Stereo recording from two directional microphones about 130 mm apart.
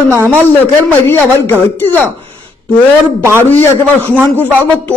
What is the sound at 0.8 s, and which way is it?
Speech, 15° left (ahead or behind).